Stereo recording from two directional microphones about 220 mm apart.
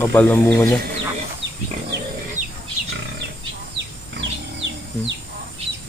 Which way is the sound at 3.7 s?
55° right (ahead or behind).